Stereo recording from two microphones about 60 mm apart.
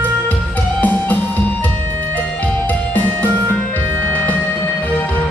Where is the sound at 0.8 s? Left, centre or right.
Left.